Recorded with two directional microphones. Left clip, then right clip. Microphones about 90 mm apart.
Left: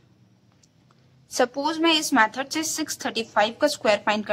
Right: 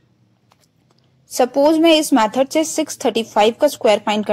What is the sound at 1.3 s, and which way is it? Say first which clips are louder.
A woman's voice: right 9 dB; 40° right (ahead or behind).